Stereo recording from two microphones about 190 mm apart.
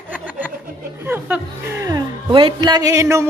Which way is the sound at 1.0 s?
10° right (ahead or behind).